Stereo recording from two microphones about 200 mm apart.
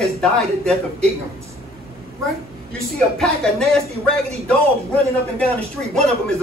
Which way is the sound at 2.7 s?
5° left (ahead or behind).